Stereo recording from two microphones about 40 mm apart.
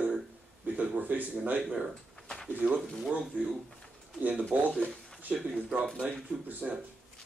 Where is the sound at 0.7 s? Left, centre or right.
Right.